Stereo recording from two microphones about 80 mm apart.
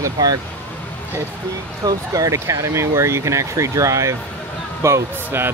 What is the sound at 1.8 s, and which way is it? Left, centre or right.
Speech, right.